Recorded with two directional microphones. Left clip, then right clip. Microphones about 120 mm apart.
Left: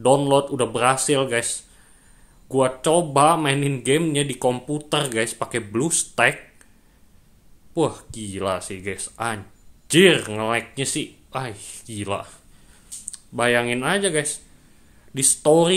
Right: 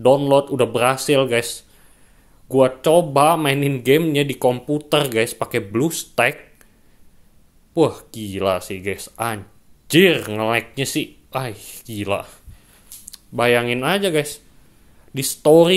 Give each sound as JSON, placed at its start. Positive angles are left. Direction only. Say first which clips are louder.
{"t": 0.0, "sound": "speech", "louder": "right 3 dB", "side_deg": -20}
{"t": 7.7, "sound": "speech", "louder": "right 5 dB", "side_deg": -30}
{"t": 15.1, "sound": "speech", "louder": "right 4 dB", "side_deg": -25}